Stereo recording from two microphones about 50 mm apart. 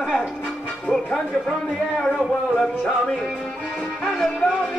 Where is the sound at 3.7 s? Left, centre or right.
Centre.